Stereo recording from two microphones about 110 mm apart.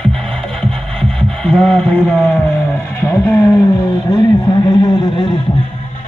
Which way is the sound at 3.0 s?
20° left (ahead or behind).